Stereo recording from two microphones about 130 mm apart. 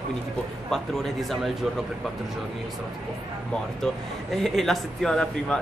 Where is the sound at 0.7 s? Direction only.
Centre (ahead or behind).